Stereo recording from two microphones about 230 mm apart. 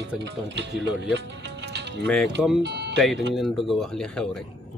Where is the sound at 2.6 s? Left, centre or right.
Right.